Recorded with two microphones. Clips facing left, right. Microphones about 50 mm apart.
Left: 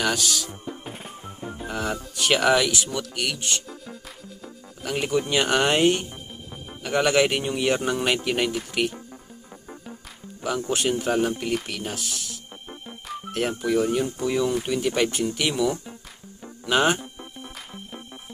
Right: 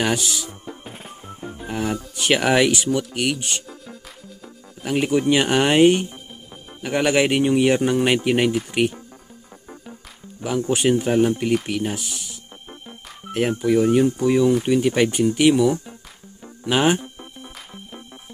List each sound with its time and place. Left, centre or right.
0.0 s speech: right
0.8 s music: centre
1.7 s speech: centre
4.8 s speech: centre
10.4 s speech: centre